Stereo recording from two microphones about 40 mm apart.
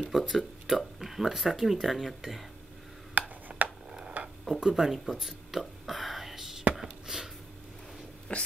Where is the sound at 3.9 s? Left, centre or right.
Centre.